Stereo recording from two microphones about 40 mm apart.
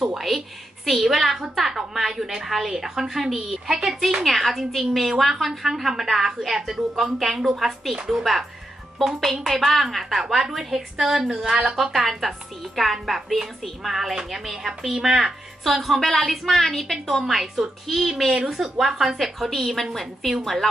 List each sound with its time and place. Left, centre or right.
0.0 s a woman's voice: centre
15.8 s a woman's voice: centre
17.2 s a woman's voice: centre